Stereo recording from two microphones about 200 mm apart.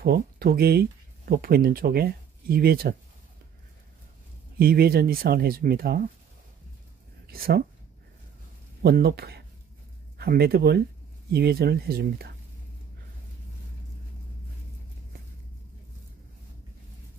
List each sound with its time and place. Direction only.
0.0 s speech: 50° right (ahead or behind)
4.6 s speech: 50° right (ahead or behind)
7.2 s a woman's voice: 50° right (ahead or behind)
8.8 s speech: 50° right (ahead or behind)